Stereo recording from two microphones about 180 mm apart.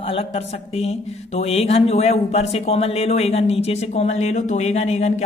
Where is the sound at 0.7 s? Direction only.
35° left (ahead or behind).